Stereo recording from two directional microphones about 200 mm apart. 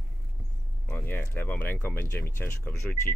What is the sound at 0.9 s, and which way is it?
Speech, 10° left (ahead or behind).